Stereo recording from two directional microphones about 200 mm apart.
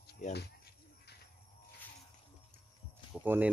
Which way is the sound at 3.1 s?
10° right (ahead or behind).